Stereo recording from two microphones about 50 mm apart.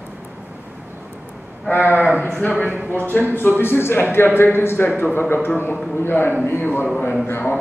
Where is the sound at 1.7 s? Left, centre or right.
Left.